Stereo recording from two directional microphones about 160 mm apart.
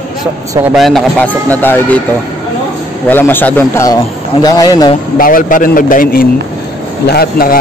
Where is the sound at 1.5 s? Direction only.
10° left (ahead or behind).